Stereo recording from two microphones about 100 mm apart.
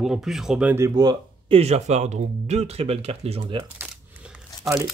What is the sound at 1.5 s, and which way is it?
Speech, 90° right.